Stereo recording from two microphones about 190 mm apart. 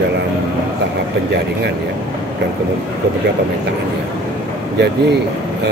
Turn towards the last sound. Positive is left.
turn(degrees=-60)  # may be behind; listen again after turning